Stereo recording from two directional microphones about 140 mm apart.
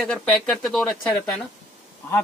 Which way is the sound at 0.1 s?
5° left (ahead or behind).